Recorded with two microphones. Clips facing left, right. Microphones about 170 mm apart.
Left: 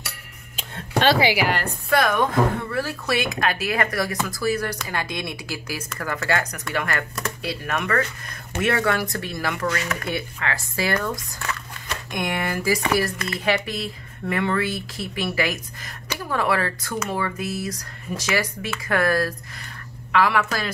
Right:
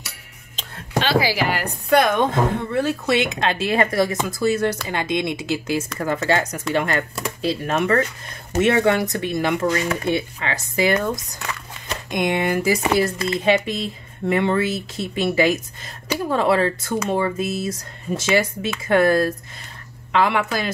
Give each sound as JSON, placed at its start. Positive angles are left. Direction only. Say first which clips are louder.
{"t": 1.9, "sound": "speech", "louder": "right 4 dB", "side_deg": -20}